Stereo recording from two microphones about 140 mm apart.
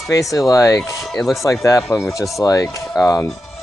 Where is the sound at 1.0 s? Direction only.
Centre (ahead or behind).